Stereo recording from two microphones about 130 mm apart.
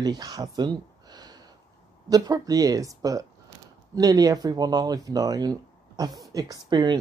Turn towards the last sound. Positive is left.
turn(degrees=-35)  # may be behind; listen again after turning